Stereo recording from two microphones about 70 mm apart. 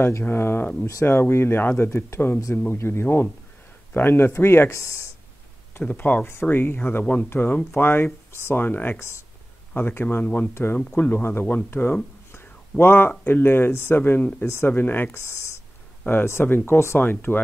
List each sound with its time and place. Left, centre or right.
0.2 s speech: left
4.6 s speech: left
5.8 s speech: left
14.7 s speech: left
15.1 s speech: left